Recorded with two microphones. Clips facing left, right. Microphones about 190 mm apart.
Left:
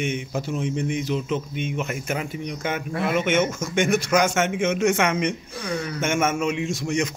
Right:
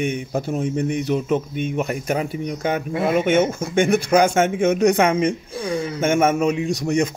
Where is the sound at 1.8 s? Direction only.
35° right (ahead or behind).